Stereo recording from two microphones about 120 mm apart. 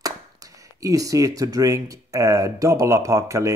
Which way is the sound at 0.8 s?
30° right (ahead or behind).